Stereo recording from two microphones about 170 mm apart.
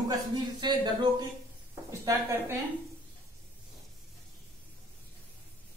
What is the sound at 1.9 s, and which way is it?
Speech, 15° right (ahead or behind).